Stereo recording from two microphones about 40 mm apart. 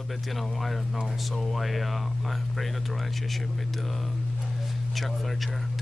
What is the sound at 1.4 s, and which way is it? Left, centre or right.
Speech, centre.